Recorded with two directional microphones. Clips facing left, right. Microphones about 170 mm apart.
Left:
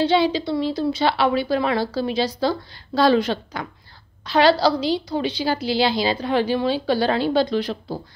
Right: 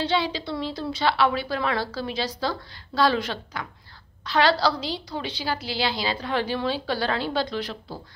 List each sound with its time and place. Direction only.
0.1 s a woman's voice: 15° left (ahead or behind)